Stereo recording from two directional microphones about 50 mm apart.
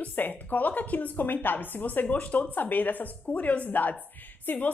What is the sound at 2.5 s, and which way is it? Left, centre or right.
A woman's voice, left.